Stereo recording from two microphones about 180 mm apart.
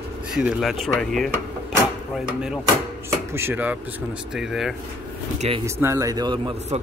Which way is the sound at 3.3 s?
15° right (ahead or behind).